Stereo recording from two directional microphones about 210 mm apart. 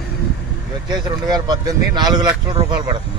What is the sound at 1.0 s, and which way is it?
Speech, 20° right (ahead or behind).